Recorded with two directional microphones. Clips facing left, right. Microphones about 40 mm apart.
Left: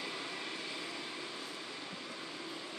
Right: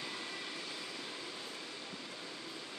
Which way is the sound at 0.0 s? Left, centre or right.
Centre.